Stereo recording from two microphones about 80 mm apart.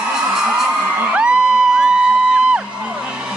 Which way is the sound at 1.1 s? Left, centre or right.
Centre.